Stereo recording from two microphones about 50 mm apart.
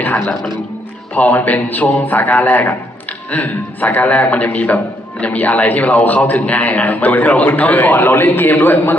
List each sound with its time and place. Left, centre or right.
0.0 s a man's voice: left